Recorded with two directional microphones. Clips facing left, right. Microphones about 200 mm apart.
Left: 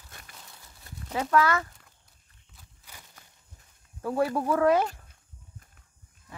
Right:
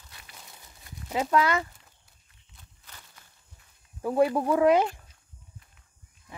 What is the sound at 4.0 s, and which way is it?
Speech, 20° right (ahead or behind).